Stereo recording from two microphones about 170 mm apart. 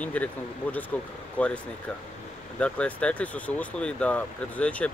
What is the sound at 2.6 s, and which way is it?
Speech, 5° left (ahead or behind).